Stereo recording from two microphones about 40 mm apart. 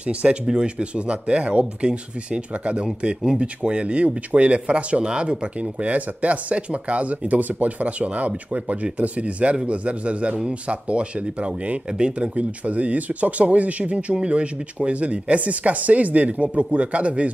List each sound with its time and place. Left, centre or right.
0.0 s speech: right